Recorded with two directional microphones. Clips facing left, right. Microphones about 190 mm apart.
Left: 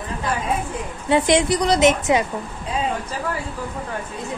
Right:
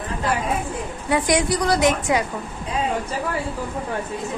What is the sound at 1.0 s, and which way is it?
A woman's voice, 25° left (ahead or behind).